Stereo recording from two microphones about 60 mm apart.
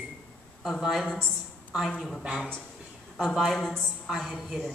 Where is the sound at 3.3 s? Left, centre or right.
Centre.